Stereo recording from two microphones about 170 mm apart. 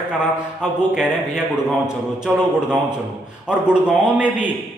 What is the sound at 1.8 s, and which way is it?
A man's voice, 5° right (ahead or behind).